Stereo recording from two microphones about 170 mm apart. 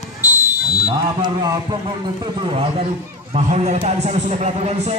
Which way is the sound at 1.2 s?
25° right (ahead or behind).